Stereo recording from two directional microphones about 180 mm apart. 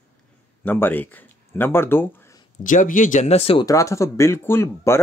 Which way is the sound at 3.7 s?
15° left (ahead or behind).